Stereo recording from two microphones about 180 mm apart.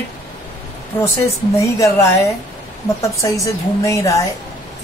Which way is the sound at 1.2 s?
15° left (ahead or behind).